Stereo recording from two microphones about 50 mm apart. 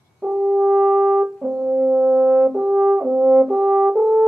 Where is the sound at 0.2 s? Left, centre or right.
Centre.